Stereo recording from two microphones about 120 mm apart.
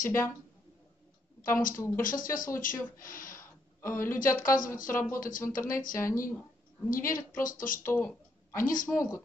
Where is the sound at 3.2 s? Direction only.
20° left (ahead or behind).